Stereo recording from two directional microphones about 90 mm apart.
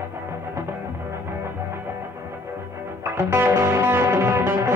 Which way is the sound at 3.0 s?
25° right (ahead or behind).